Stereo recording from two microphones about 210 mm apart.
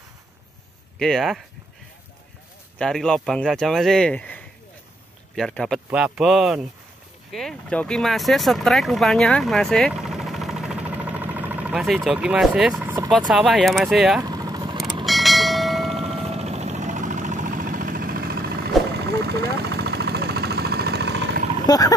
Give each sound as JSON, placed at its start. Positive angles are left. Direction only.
{"t": 0.9, "sound": "speech", "side_deg": 0}
{"t": 2.8, "sound": "speech", "side_deg": 5}
{"t": 14.2, "sound": "vehicle", "side_deg": -20}
{"t": 15.0, "sound": "bell", "side_deg": 0}
{"t": 15.9, "sound": "vehicle", "side_deg": -30}
{"t": 21.6, "sound": "a sound", "side_deg": 15}